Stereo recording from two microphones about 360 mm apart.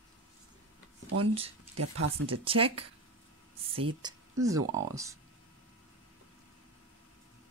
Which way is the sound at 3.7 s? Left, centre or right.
Centre.